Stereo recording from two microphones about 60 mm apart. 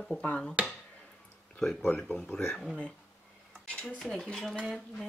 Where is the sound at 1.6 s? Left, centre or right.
Centre.